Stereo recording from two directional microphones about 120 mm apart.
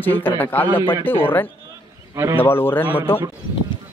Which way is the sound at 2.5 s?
15° left (ahead or behind).